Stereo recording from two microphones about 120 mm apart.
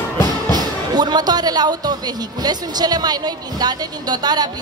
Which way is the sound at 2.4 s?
35° right (ahead or behind).